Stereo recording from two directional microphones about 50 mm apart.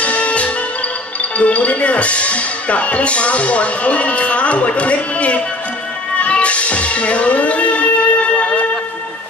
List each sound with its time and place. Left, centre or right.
0.0 s music: left
1.4 s speech: left
6.2 s music: left